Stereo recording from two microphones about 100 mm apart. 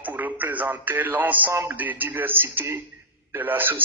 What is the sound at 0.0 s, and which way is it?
A man's voice, 15° right (ahead or behind).